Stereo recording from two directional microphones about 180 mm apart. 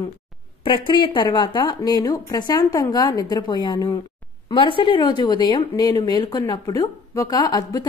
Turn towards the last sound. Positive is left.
turn(degrees=20)  # may be behind; listen again after turning